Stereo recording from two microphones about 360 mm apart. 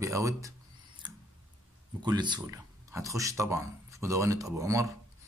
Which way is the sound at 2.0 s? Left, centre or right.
Centre.